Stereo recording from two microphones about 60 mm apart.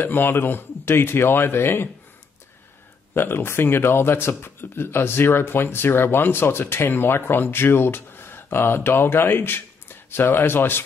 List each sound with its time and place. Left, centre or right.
0.0 s speech: left
3.2 s speech: left